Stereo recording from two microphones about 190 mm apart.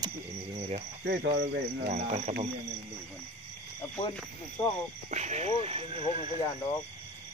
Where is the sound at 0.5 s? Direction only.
35° right (ahead or behind).